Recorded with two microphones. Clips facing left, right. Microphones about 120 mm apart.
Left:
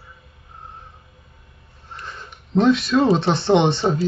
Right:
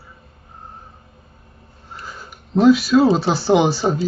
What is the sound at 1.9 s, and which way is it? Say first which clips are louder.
Speech: right 1 dB; 5° right (ahead or behind).